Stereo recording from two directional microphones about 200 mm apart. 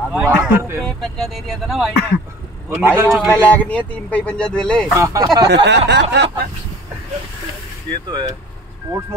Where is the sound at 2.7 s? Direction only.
10° right (ahead or behind).